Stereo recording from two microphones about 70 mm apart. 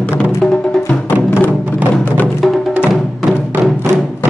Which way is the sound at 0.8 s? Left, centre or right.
Left.